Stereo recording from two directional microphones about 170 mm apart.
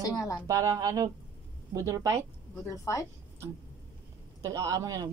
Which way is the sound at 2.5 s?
20° left (ahead or behind).